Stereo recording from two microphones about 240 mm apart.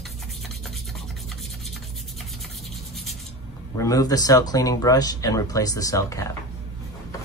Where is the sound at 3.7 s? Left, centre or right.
Centre.